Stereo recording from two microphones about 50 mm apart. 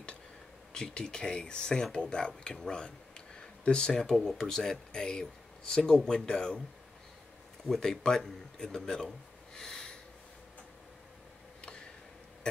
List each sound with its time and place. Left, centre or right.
0.7 s speech: centre
7.6 s a man's voice: centre